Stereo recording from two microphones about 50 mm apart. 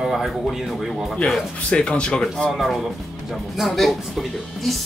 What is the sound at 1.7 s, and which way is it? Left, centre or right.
Speech, centre.